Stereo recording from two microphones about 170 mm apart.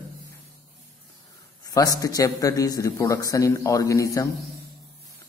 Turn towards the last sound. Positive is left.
turn(degrees=20)  # may be behind; listen again after turning